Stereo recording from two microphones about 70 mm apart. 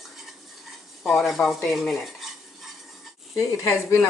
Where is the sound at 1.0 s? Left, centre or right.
Centre.